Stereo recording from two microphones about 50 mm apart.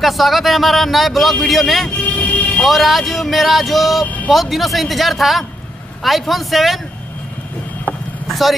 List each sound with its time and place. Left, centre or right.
0.0 s a man's voice: centre
2.1 s vehicle: left
2.6 s a man's voice: centre
8.3 s speech: centre